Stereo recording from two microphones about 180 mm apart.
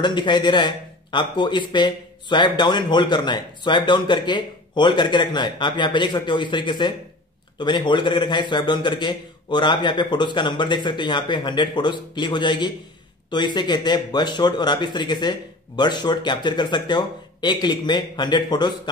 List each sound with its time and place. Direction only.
0.0 s a man's voice: 25° left (ahead or behind)